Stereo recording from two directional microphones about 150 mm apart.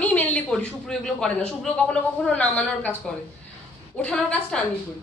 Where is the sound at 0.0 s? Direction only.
10° left (ahead or behind).